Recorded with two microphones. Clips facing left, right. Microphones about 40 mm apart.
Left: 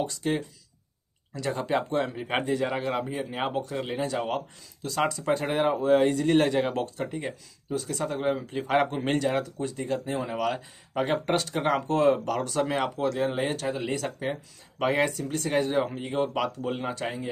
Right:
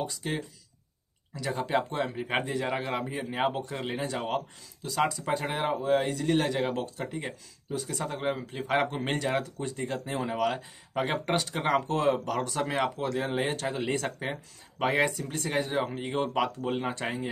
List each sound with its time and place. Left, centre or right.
0.0 s speech: centre
7.7 s speech: centre
8.0 s speech: centre
9.6 s speech: right
10.0 s speech: centre
15.4 s speech: centre